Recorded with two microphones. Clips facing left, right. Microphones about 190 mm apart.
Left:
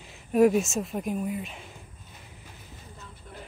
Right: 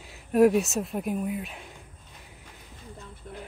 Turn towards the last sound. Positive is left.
turn(degrees=-45)  # may be behind; listen again after turning